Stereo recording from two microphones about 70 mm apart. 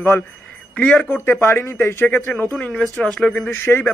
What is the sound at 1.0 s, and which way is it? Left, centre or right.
A man's voice, left.